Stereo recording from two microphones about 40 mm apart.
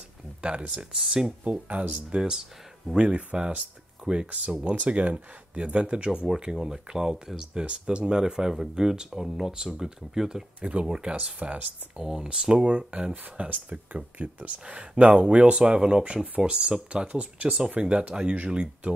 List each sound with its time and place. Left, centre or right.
0.4 s speech: right
0.9 s speech: centre
1.4 s speech: right
2.0 s speech: centre
4.6 s speech: right
6.2 s speech: centre
11.3 s speech: right
12.0 s speech: centre; by 14.5 s right
14.6 s speech: right
15.5 s speech: centre